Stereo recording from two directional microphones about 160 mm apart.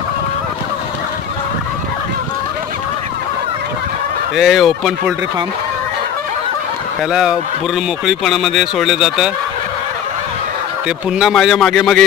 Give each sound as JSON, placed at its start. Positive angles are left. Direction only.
{"t": 4.4, "sound": "speech", "side_deg": 0}
{"t": 7.1, "sound": "speech", "side_deg": -5}
{"t": 11.1, "sound": "speech", "side_deg": -5}